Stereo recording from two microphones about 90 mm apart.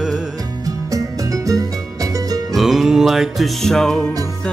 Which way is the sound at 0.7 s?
40° right (ahead or behind).